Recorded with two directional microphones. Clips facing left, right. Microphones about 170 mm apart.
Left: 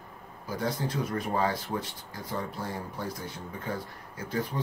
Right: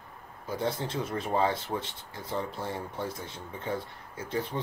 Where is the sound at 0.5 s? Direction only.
25° right (ahead or behind).